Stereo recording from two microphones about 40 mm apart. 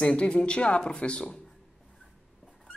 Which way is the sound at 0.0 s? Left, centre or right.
Left.